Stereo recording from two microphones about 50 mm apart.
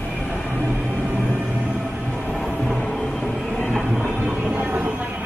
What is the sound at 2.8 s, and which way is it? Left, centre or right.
Music, centre.